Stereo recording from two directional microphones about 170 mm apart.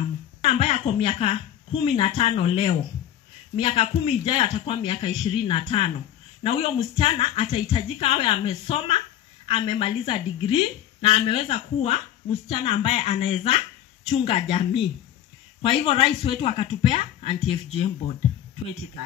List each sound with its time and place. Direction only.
0.5 s speech: 35° left (ahead or behind)